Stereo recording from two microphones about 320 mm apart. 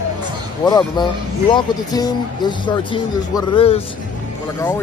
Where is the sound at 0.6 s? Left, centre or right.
Centre.